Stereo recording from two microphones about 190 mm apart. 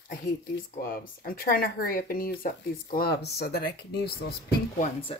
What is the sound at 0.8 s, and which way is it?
Speech, 50° left (ahead or behind).